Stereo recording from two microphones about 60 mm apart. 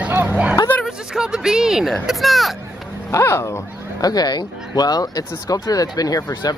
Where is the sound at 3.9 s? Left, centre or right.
Left.